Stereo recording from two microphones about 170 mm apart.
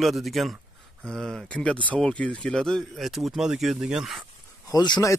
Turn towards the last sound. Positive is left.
turn(degrees=20)  # may be behind; listen again after turning